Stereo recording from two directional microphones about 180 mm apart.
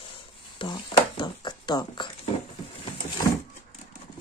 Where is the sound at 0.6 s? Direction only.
25° left (ahead or behind).